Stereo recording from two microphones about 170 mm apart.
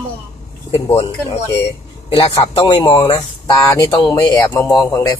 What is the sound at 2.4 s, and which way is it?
Speech, 35° left (ahead or behind).